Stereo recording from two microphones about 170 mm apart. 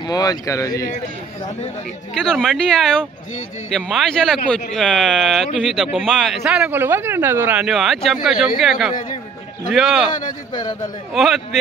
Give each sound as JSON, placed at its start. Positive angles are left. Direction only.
{"t": 0.0, "sound": "speech", "side_deg": 20}
{"t": 2.1, "sound": "speech", "side_deg": 0}
{"t": 10.1, "sound": "speech", "side_deg": 25}
{"t": 11.1, "sound": "speech", "side_deg": 0}